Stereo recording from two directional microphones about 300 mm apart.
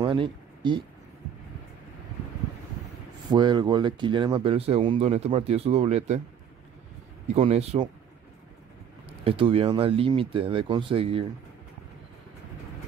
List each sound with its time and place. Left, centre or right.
0.0 s speech: centre
3.3 s speech: centre
7.2 s speech: centre
9.2 s speech: centre